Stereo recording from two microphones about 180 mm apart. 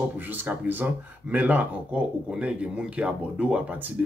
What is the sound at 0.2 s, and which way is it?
Speech, 10° right (ahead or behind).